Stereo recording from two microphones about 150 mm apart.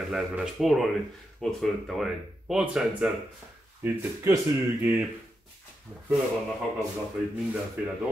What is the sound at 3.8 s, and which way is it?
Speech, 15° right (ahead or behind).